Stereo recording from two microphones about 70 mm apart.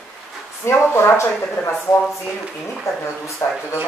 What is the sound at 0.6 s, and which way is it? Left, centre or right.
Speech, left.